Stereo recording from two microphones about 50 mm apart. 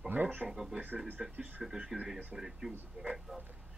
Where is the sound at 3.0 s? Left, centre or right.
Right.